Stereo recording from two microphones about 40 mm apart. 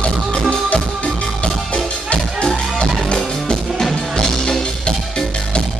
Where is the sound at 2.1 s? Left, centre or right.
Left.